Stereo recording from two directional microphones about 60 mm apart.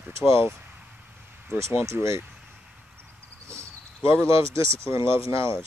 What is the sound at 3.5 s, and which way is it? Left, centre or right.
Speech, right.